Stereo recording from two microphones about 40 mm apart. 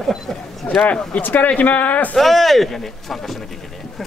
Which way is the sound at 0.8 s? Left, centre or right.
Left.